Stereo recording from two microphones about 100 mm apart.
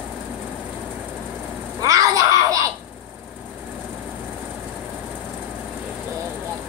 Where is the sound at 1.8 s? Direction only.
35° right (ahead or behind).